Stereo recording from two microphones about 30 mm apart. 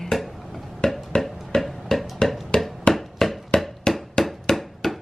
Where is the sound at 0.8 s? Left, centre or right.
Left.